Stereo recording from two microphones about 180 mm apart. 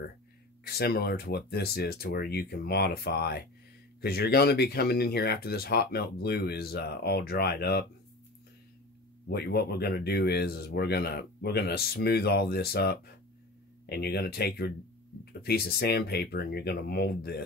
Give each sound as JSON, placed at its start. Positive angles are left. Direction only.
{"t": 0.7, "sound": "speech", "side_deg": 60}
{"t": 9.3, "sound": "speech", "side_deg": 60}